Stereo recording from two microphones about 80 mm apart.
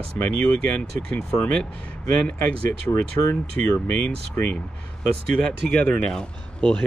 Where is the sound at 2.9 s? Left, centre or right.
Left.